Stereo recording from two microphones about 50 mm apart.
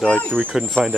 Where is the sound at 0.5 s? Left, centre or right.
Centre.